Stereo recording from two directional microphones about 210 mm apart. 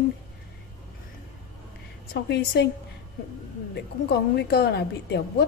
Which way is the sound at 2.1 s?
50° left (ahead or behind).